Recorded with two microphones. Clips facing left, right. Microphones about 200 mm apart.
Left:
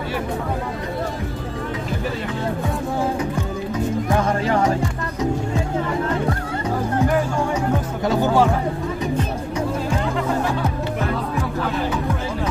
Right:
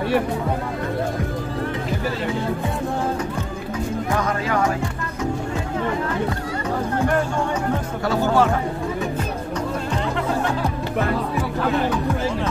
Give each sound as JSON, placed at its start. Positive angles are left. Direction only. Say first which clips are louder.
{"t": 4.2, "sound": "music", "louder": "left 2 dB", "side_deg": 30}
{"t": 8.1, "sound": "music", "louder": "left 1 dB", "side_deg": 15}